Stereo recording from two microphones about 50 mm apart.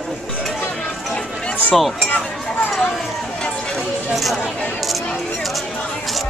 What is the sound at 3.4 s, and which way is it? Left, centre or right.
Music, centre.